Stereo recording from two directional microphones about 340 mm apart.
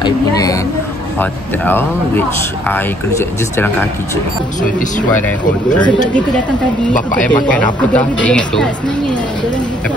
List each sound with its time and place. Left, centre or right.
0.0 s a sound: centre
1.2 s speech: centre
4.6 s speech: left
5.1 s speech: centre
7.4 s speech: centre